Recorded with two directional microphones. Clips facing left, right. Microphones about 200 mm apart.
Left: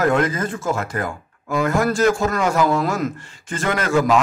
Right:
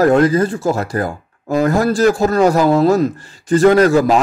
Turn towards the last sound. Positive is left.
turn(degrees=-35)  # may be behind; listen again after turning